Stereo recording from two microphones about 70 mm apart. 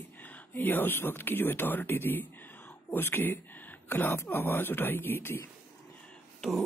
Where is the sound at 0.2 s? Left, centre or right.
Left.